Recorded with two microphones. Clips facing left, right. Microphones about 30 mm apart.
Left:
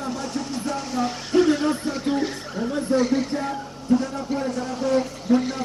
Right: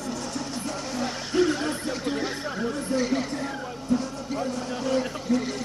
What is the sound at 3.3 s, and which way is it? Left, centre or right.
Speech, centre.